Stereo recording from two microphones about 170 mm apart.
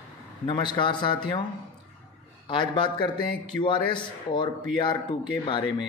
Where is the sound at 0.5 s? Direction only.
30° left (ahead or behind).